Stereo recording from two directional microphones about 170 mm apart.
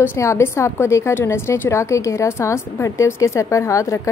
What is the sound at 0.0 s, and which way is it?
A woman's voice, 15° left (ahead or behind).